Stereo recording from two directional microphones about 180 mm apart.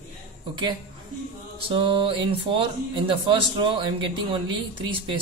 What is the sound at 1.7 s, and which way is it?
Speech, 30° right (ahead or behind).